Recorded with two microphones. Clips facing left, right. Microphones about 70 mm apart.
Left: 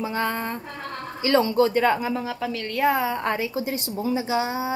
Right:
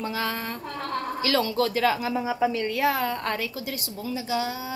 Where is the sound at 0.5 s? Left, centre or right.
Centre.